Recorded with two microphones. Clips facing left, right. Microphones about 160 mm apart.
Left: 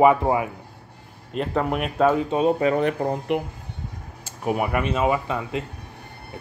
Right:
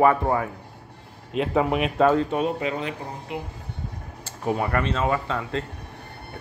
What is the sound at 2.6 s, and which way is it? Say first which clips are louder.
Speech: left 8 dB; 50° left (ahead or behind).